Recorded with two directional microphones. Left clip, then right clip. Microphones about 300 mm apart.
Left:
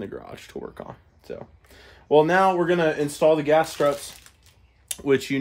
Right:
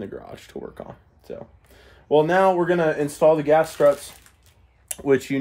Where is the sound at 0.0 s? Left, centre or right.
Centre.